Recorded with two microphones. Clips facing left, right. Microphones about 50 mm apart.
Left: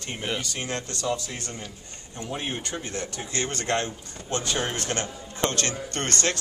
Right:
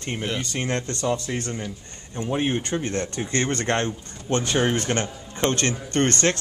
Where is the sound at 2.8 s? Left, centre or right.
Right.